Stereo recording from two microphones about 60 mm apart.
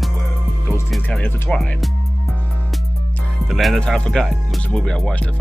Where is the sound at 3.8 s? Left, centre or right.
Centre.